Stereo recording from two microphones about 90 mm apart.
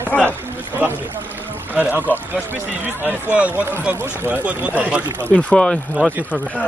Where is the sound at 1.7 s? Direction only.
20° right (ahead or behind).